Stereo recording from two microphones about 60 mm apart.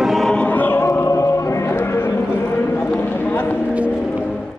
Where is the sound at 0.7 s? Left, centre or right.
Left.